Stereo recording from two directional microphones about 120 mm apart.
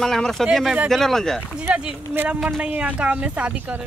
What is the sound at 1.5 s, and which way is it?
Speech, 10° right (ahead or behind).